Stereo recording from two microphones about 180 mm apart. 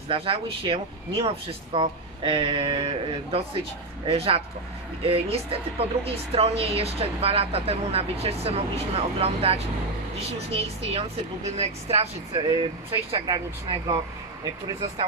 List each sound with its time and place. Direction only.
0.1 s a woman's voice: 30° right (ahead or behind)